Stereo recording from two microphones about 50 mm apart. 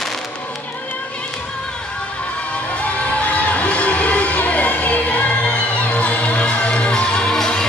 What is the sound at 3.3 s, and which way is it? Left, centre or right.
Music, left.